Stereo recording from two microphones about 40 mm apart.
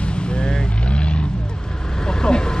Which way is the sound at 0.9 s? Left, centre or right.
Left.